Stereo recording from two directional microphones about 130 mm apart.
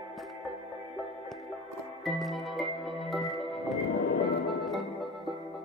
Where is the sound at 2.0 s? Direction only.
Centre (ahead or behind).